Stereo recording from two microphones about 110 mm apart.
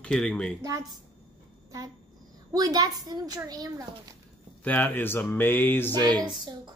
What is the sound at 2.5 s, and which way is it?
A woman's voice, 35° right (ahead or behind).